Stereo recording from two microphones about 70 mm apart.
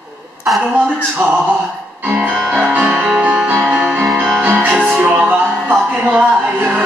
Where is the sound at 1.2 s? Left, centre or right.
Centre.